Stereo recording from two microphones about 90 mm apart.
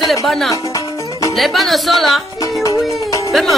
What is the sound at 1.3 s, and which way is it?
Music, centre (ahead or behind).